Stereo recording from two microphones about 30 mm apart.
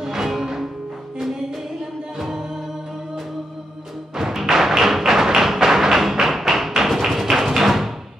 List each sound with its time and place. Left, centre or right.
0.0 s music: centre
2.1 s music: centre
4.5 s music: centre